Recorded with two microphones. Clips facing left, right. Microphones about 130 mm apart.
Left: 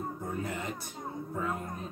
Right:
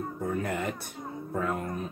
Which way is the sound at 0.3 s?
60° right (ahead or behind).